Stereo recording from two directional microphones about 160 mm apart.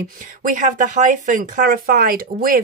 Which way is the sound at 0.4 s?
50° right (ahead or behind).